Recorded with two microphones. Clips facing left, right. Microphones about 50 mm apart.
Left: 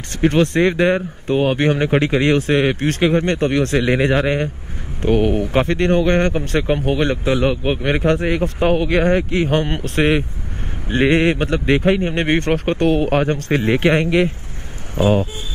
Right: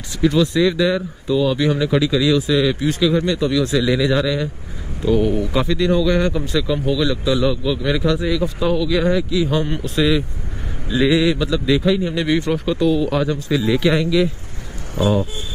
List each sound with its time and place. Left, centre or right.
0.2 s speech: left